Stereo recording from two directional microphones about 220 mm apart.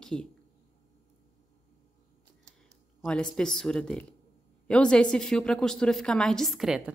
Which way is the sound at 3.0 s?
5° left (ahead or behind).